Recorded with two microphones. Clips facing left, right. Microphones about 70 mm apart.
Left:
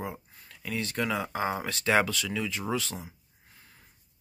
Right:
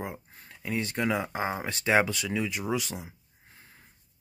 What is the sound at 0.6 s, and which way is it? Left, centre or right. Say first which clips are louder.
Speech: right 2 dB; right.